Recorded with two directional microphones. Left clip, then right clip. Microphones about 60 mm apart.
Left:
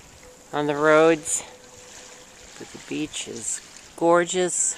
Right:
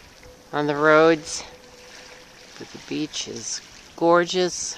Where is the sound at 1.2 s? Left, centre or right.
Right.